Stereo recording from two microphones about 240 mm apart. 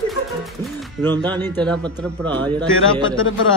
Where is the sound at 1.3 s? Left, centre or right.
Centre.